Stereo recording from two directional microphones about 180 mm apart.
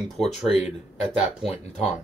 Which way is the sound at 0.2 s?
Centre (ahead or behind).